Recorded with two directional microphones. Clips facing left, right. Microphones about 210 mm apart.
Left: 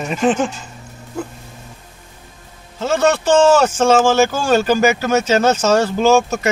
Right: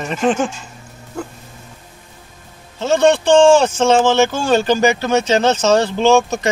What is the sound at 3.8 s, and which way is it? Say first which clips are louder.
Speech: even; 10° left (ahead or behind).